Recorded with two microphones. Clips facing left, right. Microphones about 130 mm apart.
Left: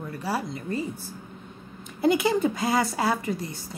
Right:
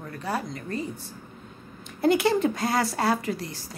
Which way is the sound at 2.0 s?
Centre (ahead or behind).